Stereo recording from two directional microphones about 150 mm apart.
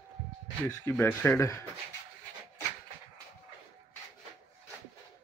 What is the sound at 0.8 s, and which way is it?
Speech, 15° left (ahead or behind).